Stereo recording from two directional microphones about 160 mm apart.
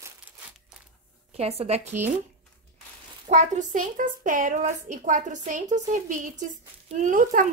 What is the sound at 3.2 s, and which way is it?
A woman's voice, 50° right (ahead or behind).